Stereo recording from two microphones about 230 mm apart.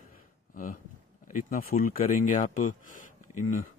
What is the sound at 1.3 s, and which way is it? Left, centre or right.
A man's voice, left.